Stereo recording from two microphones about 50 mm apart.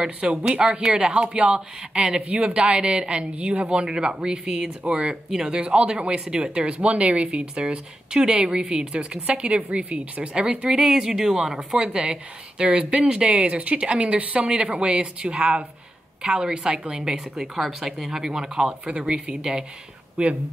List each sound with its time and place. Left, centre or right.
0.0 s a woman's voice: centre